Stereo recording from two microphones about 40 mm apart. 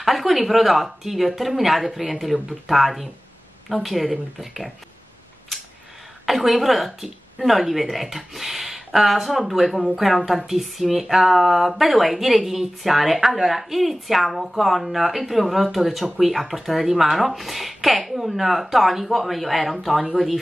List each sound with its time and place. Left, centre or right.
0.0 s speech: centre
6.2 s speech: centre